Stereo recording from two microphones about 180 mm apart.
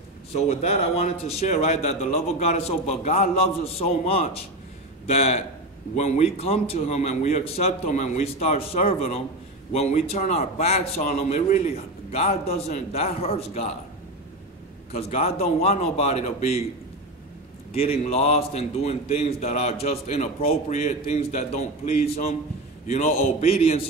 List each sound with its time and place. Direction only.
0.3 s a man's voice: 35° left (ahead or behind)
14.9 s a man's voice: 35° left (ahead or behind)
17.7 s a man's voice: 35° left (ahead or behind)